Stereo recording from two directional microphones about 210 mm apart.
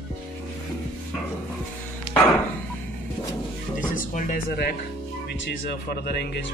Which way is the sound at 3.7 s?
40° left (ahead or behind).